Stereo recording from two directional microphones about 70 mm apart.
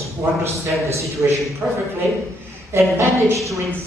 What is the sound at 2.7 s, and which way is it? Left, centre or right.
Speech, right.